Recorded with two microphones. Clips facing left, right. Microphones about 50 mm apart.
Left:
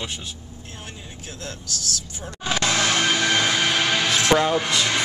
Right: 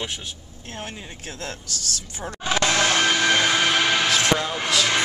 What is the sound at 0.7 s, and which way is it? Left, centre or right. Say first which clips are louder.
Speech: right 6 dB; right.